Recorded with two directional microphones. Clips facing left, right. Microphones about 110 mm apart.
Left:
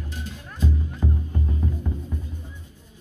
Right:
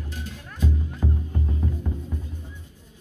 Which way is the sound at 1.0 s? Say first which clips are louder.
Left 1 dB; 5° right (ahead or behind).